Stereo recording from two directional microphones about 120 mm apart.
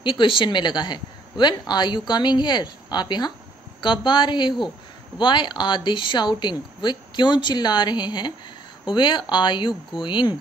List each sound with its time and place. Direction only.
0.0 s speech: 45° left (ahead or behind)